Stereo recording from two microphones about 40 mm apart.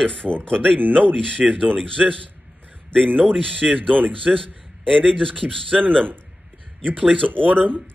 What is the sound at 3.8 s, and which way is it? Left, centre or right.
A man's voice, centre.